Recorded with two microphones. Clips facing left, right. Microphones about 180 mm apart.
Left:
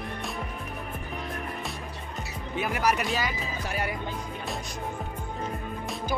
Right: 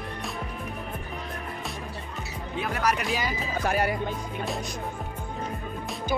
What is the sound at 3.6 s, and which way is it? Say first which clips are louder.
Speech: right 7 dB; 50° right (ahead or behind).